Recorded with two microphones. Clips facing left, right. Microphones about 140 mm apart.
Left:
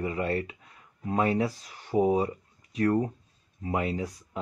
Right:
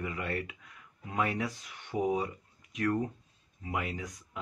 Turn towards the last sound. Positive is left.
turn(degrees=35)  # may be behind; listen again after turning